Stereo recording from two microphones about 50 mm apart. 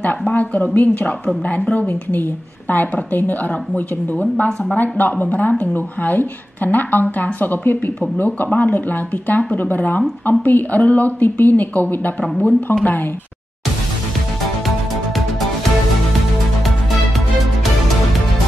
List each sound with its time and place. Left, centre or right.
0.0 s a woman's voice: left